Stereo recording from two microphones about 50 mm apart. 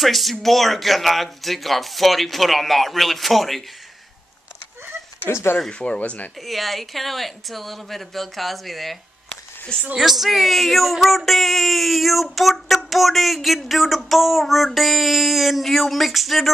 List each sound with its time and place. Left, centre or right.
0.0 s speech: centre
5.3 s speech: left
5.7 s speech: left
5.9 s speech: left
6.4 s speech: centre
9.9 s speech: centre